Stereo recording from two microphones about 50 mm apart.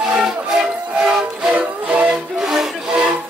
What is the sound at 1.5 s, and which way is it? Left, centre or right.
Music, right.